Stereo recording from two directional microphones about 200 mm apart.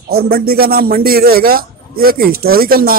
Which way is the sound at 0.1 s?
50° right (ahead or behind).